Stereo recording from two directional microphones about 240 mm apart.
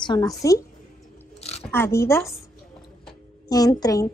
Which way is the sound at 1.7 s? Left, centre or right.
Centre.